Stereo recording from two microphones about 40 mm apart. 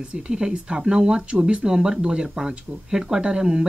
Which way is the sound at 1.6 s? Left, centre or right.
Centre.